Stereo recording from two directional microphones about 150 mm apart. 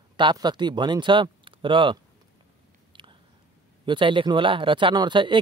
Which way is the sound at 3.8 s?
35° right (ahead or behind).